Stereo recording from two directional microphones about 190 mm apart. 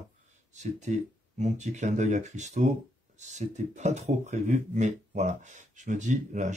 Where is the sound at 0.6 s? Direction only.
40° right (ahead or behind).